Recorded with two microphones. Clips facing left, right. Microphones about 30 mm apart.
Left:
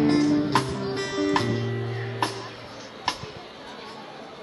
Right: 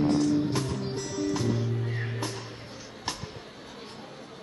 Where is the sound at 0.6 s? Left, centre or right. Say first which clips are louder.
Left 3 dB; left.